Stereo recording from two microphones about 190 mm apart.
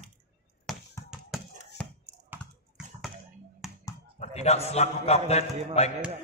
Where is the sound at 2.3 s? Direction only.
10° right (ahead or behind).